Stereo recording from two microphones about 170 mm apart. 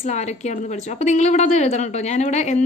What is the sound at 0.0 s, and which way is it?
A woman's voice, 40° left (ahead or behind).